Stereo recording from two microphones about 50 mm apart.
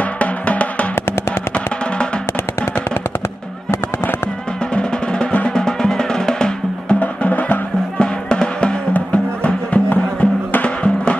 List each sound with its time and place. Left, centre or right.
0.2 s music: left
4.7 s music: centre
7.0 s music: left
8.0 s music: centre
8.9 s music: left